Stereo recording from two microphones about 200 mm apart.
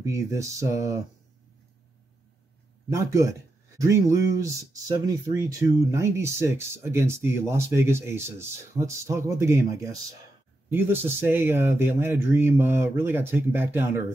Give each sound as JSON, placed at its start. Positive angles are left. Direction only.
{"t": 0.0, "sound": "speech", "side_deg": -15}
{"t": 2.9, "sound": "speech", "side_deg": -15}
{"t": 10.7, "sound": "speech", "side_deg": -10}